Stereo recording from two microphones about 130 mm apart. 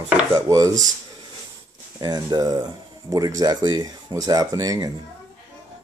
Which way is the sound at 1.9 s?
30° right (ahead or behind).